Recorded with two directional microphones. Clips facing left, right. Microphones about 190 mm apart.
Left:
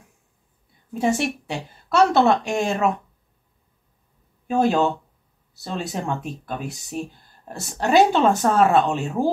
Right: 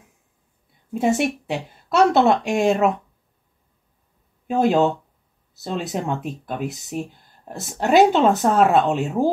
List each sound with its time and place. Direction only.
0.9 s speech: 20° right (ahead or behind)
4.5 s speech: 20° right (ahead or behind)